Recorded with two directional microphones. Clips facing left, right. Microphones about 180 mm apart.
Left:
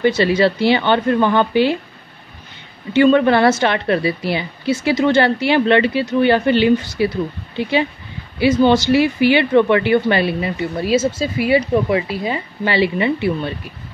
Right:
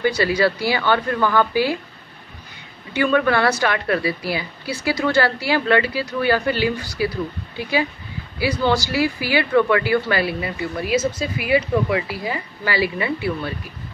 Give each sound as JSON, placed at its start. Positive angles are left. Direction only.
{"t": 0.0, "sound": "speech", "side_deg": 25}
{"t": 2.9, "sound": "speech", "side_deg": 25}